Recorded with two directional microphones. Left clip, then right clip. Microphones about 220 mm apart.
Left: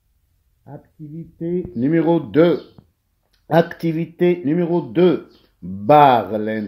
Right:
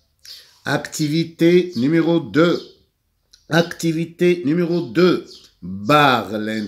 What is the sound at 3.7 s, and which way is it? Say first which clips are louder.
Speech: even; 5° left (ahead or behind).